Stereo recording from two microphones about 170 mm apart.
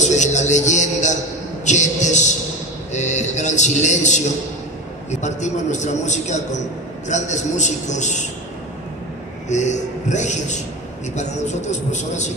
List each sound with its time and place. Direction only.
0.0 s a sound: 45° left (ahead or behind)
2.9 s a man's voice: 45° left (ahead or behind)
9.5 s a man's voice: 45° left (ahead or behind)